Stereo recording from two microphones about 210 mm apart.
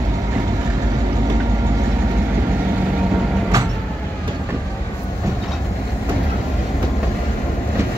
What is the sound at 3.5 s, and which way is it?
Vehicle, 15° right (ahead or behind).